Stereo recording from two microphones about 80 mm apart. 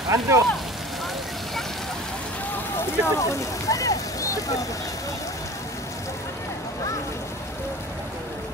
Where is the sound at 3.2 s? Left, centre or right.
Left.